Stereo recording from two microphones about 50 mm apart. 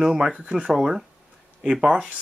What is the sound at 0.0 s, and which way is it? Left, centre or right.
Speech, centre.